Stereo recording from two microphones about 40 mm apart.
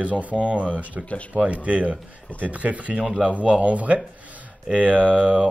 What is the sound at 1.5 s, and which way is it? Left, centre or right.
Speech, right.